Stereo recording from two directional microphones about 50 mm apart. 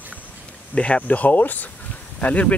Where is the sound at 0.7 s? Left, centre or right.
Left.